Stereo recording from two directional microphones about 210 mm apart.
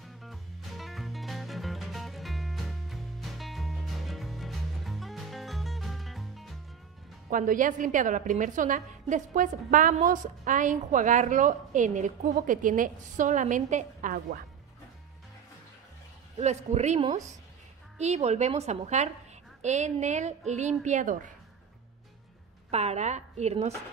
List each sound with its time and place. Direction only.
0.0 s music: centre (ahead or behind)
7.2 s a woman's voice: 40° right (ahead or behind)
16.3 s a woman's voice: 30° right (ahead or behind)
22.7 s a woman's voice: 30° right (ahead or behind)